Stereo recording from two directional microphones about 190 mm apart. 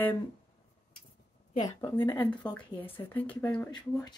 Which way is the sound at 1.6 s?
15° left (ahead or behind).